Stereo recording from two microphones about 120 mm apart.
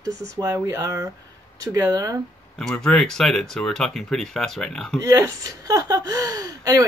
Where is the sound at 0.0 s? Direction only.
25° right (ahead or behind).